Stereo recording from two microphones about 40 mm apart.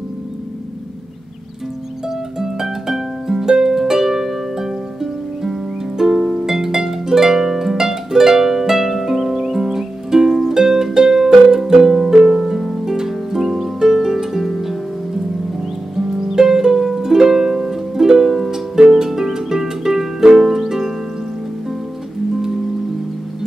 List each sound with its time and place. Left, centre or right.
2.0 s music: centre
12.3 s harp: centre
16.1 s music: centre
18.8 s harp: centre